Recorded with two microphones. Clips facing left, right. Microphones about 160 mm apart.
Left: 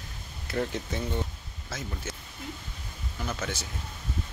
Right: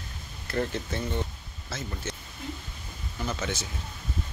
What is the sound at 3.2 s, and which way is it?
Speech, 5° left (ahead or behind).